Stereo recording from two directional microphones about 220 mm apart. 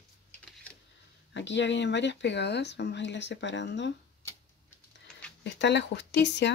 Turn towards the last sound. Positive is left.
turn(degrees=50)  # may be behind; listen again after turning